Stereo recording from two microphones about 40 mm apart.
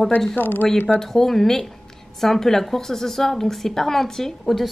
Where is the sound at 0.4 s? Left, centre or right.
Left.